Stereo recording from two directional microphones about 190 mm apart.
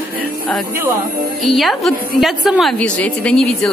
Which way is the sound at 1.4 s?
Centre (ahead or behind).